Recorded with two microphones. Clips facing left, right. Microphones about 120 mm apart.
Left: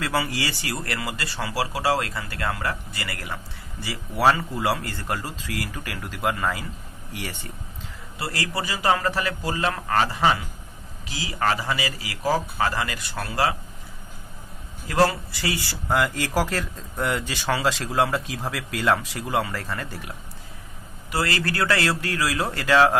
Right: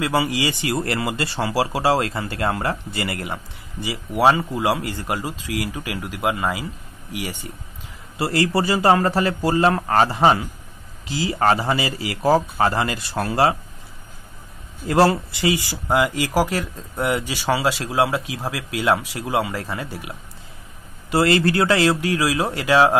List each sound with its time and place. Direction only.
0.0 s speech: 15° right (ahead or behind)
8.2 s a man's voice: 25° right (ahead or behind)
14.9 s speech: 30° right (ahead or behind)
15.4 s speech: 15° right (ahead or behind)
21.1 s speech: 25° right (ahead or behind)